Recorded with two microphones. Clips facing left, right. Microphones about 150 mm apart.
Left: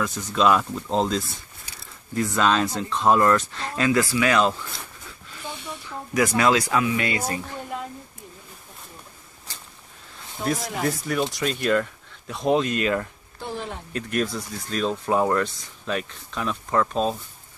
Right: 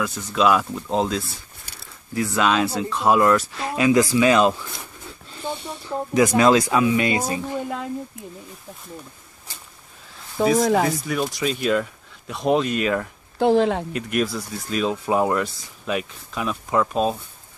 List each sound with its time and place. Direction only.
0.0 s speech: 5° right (ahead or behind)
5.9 s speech: 20° right (ahead or behind)
10.3 s speech: 90° right
11.3 s speech: 5° right (ahead or behind)
13.4 s speech: 90° right
13.9 s speech: 10° right (ahead or behind)